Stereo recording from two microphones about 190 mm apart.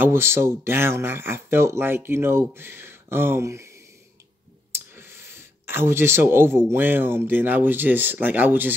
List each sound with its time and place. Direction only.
0.0 s speech: 15° right (ahead or behind)
4.9 s a sound: 10° right (ahead or behind)
6.7 s speech: 10° right (ahead or behind)